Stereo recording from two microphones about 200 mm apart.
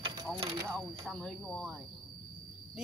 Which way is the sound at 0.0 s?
20° right (ahead or behind).